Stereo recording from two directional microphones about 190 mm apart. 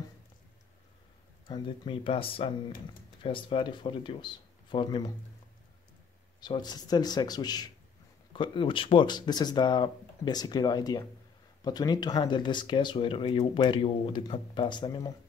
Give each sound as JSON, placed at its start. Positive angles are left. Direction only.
{"t": 1.5, "sound": "speech", "side_deg": 25}
{"t": 6.4, "sound": "speech", "side_deg": 20}